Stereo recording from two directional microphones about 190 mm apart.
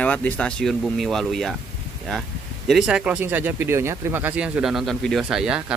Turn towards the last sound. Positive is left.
turn(degrees=-5)  # may be behind; listen again after turning